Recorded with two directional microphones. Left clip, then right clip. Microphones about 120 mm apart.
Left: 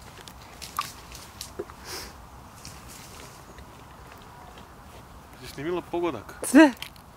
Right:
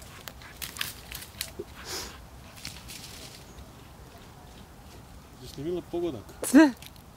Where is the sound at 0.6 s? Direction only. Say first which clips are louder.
Left 4 dB; 25° right (ahead or behind).